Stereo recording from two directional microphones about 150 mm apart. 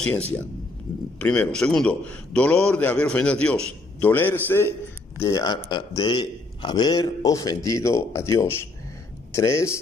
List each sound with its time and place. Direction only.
1.2 s a man's voice: 10° left (ahead or behind)
5.2 s a man's voice: 25° left (ahead or behind)